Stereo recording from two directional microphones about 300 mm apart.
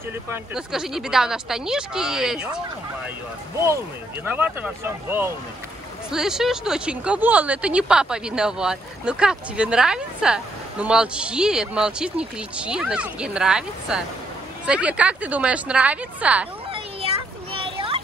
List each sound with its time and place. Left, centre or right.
0.3 s speech: centre
3.6 s speech: centre
16.7 s children playing: centre